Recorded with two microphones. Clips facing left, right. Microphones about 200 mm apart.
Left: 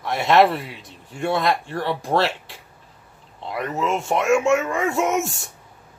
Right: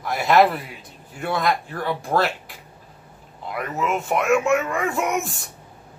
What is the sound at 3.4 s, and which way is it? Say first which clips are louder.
Speech: left 1 dB; 30° left (ahead or behind).